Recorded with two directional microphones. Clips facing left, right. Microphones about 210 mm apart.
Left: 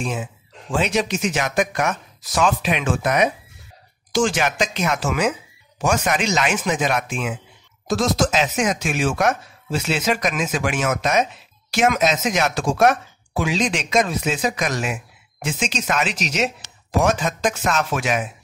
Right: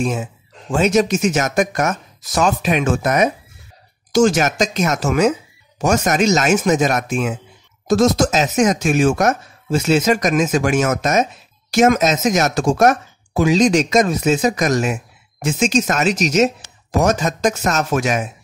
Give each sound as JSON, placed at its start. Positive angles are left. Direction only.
{"t": 0.0, "sound": "speech", "side_deg": -45}